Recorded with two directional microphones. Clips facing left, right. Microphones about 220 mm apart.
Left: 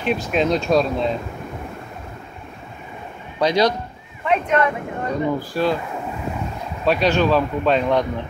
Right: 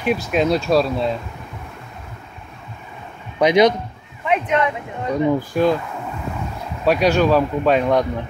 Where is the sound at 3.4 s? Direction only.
20° right (ahead or behind).